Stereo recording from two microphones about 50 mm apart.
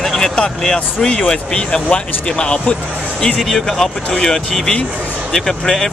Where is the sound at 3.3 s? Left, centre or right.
Centre.